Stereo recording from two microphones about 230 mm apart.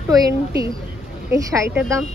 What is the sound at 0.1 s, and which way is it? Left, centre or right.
Speech, centre.